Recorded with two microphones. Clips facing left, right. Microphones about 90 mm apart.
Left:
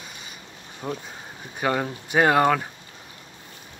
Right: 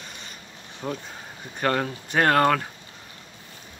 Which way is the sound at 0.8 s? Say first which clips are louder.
Even; 5° left (ahead or behind).